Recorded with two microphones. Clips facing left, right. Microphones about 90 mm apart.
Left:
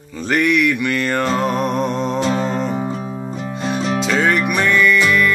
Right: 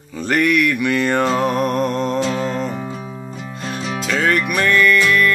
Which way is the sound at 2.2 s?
25° left (ahead or behind).